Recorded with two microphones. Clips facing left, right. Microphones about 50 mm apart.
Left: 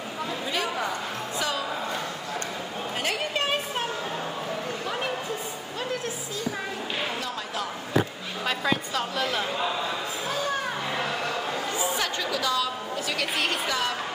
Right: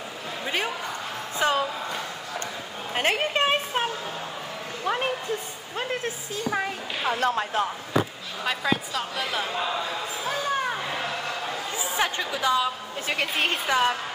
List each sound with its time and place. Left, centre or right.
1.4 s a woman's voice: right
2.9 s a sound: right
4.8 s a sound: right
5.8 s speech: right
8.5 s a woman's voice: centre
11.7 s a woman's voice: right